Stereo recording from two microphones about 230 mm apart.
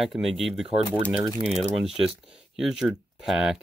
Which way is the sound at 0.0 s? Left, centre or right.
Centre.